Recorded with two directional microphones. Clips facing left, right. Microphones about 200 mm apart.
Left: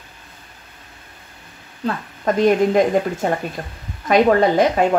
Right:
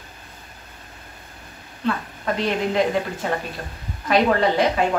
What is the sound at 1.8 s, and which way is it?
Speech, 45° left (ahead or behind).